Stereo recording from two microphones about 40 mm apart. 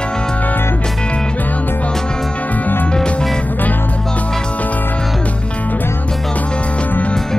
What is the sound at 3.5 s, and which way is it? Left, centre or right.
Music, left.